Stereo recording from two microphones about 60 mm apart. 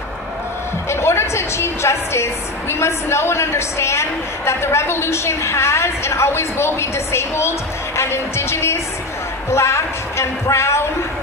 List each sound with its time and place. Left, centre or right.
0.8 s music: left
2.7 s a woman's voice: left